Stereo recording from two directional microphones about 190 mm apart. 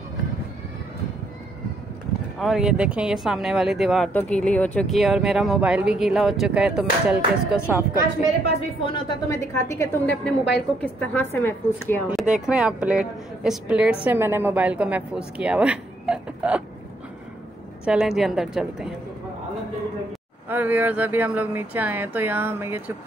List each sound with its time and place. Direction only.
2.3 s speech: centre (ahead or behind)
8.5 s speech: 30° left (ahead or behind)
9.3 s a woman's voice: 15° left (ahead or behind)
12.1 s a woman's voice: 5° right (ahead or behind)
17.8 s speech: 5° right (ahead or behind)
20.4 s a woman's voice: 10° right (ahead or behind)